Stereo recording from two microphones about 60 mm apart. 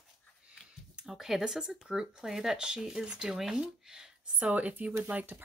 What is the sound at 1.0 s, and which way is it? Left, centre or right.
Speech, centre.